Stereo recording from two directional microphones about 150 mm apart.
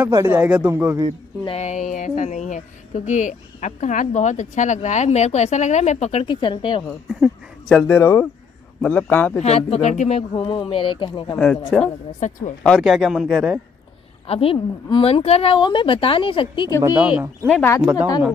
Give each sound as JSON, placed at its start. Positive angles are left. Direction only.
{"t": 0.0, "sound": "speech", "side_deg": -15}
{"t": 1.4, "sound": "a woman's voice", "side_deg": 45}
{"t": 6.2, "sound": "a woman's voice", "side_deg": 35}
{"t": 7.2, "sound": "a man's voice", "side_deg": 5}
{"t": 9.4, "sound": "a woman's voice", "side_deg": 45}
{"t": 11.3, "sound": "a man's voice", "side_deg": 10}
{"t": 12.2, "sound": "a woman's voice", "side_deg": 55}
{"t": 12.6, "sound": "speech", "side_deg": 0}
{"t": 14.2, "sound": "a woman's voice", "side_deg": 40}
{"t": 16.8, "sound": "speech", "side_deg": -10}
{"t": 17.5, "sound": "a man's voice", "side_deg": 15}